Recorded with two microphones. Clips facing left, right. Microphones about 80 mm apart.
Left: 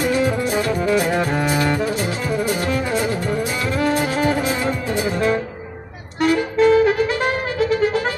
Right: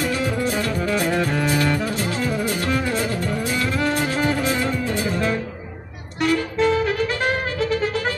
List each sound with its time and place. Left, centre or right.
0.0 s music: centre
1.1 s music: left
1.4 s music: centre